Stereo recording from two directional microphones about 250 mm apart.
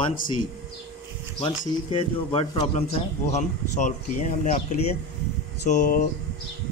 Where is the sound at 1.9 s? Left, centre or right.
Left.